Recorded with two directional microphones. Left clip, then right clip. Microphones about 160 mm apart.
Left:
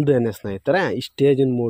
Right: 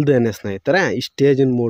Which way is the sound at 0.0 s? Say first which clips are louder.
Right 3 dB; 40° right (ahead or behind).